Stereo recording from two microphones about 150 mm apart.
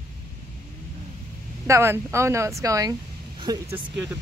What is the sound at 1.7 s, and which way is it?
Speech, 15° right (ahead or behind).